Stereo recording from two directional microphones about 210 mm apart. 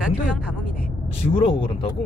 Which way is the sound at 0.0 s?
5° right (ahead or behind).